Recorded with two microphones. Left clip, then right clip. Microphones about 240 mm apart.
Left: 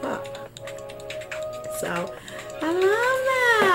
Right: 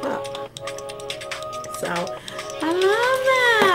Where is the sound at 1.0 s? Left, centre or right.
Right.